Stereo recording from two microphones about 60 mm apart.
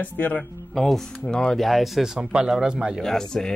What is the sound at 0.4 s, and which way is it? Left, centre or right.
Speech, centre.